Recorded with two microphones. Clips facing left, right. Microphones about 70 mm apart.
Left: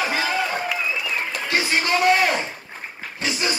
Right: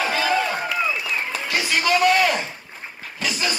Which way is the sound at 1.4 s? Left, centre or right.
Left.